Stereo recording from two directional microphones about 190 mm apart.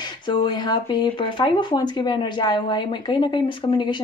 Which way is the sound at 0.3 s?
25° left (ahead or behind).